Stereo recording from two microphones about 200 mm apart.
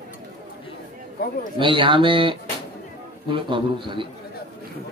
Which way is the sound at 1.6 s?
25° right (ahead or behind).